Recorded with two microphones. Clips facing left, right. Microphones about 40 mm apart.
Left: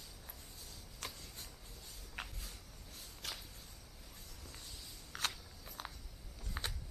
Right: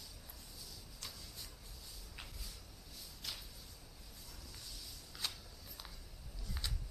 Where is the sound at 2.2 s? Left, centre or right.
Left.